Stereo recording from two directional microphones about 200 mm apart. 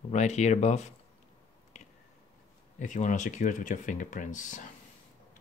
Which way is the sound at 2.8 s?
40° left (ahead or behind).